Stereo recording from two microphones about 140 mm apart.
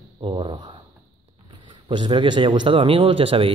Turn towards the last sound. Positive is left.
turn(degrees=-40)  # may be behind; listen again after turning